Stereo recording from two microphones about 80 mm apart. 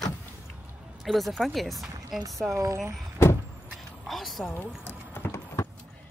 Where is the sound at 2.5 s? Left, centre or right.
Right.